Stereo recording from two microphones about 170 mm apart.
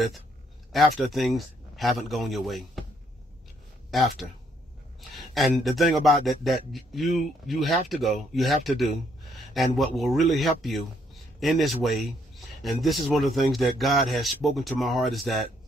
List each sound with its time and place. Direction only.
0.7 s speech: centre (ahead or behind)
3.9 s speech: centre (ahead or behind)
5.1 s a sound: centre (ahead or behind)
5.6 s speech: centre (ahead or behind)